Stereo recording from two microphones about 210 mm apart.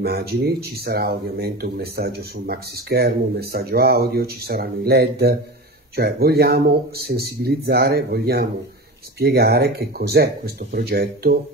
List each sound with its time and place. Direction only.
0.0 s speech: 50° right (ahead or behind)